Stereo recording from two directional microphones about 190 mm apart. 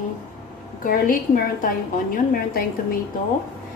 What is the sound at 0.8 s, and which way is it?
Speech, 45° left (ahead or behind).